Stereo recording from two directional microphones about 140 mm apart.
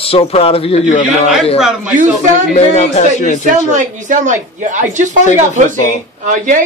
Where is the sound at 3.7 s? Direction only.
60° right (ahead or behind).